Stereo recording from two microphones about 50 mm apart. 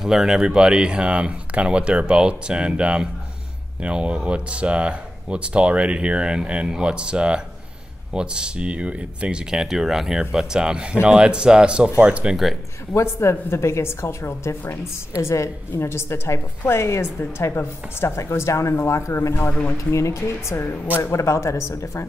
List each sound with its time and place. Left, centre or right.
0.0 s speech: centre; by 12.3 s right
12.9 s a woman's voice: left
15.2 s speech: left
15.8 s a woman's voice: left
21.0 s speech: left